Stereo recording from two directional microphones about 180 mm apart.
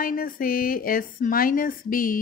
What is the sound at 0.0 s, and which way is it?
A woman's voice, 50° left (ahead or behind).